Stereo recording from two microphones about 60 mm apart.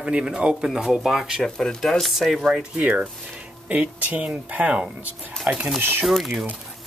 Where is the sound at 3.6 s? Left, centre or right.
Right.